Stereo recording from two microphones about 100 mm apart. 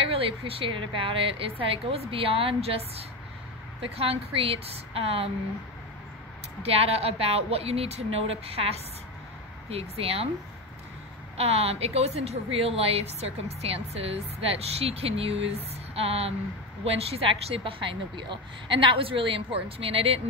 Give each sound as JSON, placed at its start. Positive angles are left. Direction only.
{"t": 0.0, "sound": "a woman's voice", "side_deg": -70}
{"t": 6.6, "sound": "a woman's voice", "side_deg": -85}
{"t": 11.3, "sound": "a woman's voice", "side_deg": -90}